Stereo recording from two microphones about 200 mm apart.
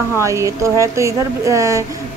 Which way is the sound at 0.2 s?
15° right (ahead or behind).